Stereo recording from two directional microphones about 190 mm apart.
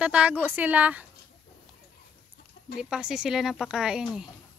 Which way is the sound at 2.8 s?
5° right (ahead or behind).